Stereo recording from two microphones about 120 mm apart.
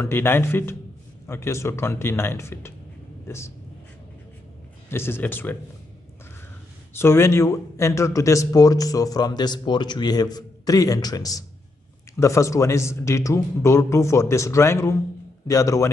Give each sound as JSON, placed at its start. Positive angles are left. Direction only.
{"t": 0.0, "sound": "a man's voice", "side_deg": 20}
{"t": 4.8, "sound": "speech", "side_deg": 20}
{"t": 6.9, "sound": "a man's voice", "side_deg": 20}